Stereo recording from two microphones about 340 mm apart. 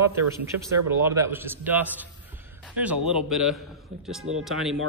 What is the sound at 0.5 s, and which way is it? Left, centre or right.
Speech, right.